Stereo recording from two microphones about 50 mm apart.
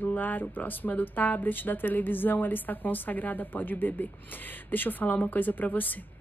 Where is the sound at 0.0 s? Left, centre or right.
Left.